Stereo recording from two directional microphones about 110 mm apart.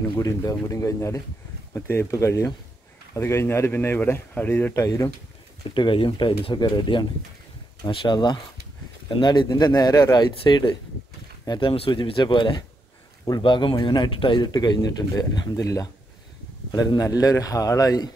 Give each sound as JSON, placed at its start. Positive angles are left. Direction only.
{"t": 0.2, "sound": "a man's voice", "side_deg": 35}
{"t": 4.7, "sound": "speech", "side_deg": 30}
{"t": 5.8, "sound": "a man's voice", "side_deg": 50}
{"t": 10.4, "sound": "speech", "side_deg": 45}
{"t": 11.7, "sound": "a man's voice", "side_deg": 55}